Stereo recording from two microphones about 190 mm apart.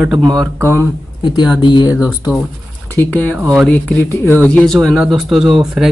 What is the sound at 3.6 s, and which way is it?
Speech, 10° left (ahead or behind).